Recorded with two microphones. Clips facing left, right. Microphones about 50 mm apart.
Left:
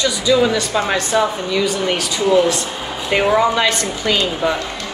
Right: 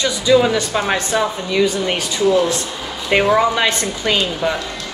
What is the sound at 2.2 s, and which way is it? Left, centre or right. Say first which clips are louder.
Speech: left 1 dB; left.